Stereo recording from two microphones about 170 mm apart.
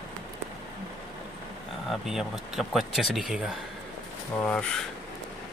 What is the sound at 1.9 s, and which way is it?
Speech, centre (ahead or behind).